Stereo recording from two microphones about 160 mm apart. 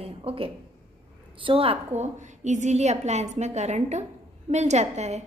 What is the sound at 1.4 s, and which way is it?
A woman's voice, 35° right (ahead or behind).